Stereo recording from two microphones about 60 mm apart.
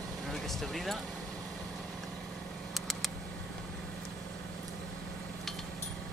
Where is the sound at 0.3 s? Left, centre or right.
Centre.